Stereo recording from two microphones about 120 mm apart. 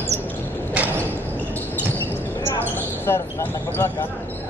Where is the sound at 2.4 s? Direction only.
20° left (ahead or behind).